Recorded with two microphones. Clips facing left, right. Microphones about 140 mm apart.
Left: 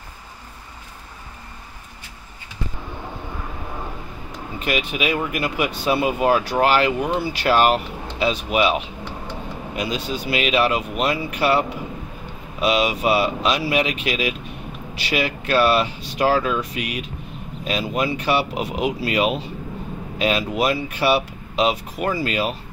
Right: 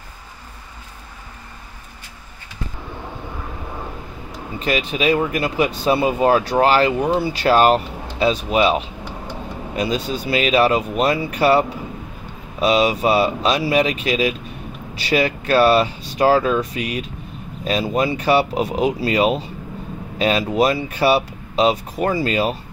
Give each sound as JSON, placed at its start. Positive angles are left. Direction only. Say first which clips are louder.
{"t": 4.6, "sound": "speech", "louder": "right 3 dB", "side_deg": -35}